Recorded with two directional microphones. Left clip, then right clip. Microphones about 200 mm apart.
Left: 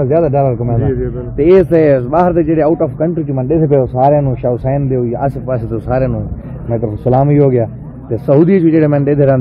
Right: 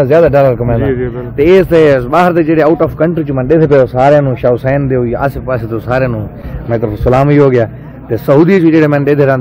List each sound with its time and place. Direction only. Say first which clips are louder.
0.3 s speech: right 5 dB; 10° right (ahead or behind)
0.7 s a man's voice: right 3 dB; 40° right (ahead or behind)
1.3 s a man's voice: right 2 dB; 5° left (ahead or behind)
5.5 s a man's voice: right 2 dB; 5° left (ahead or behind)
6.7 s a man's voice: right 3 dB; 15° right (ahead or behind); by 9.3 s 5° left (ahead or behind)